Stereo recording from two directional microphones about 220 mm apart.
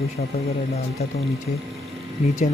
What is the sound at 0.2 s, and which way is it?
Speech, 35° left (ahead or behind).